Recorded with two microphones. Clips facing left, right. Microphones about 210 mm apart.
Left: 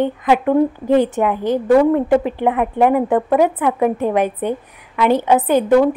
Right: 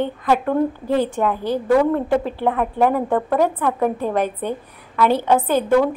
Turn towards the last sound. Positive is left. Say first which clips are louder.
# left 4 dB
turn(degrees=15)  # may be behind; listen again after turning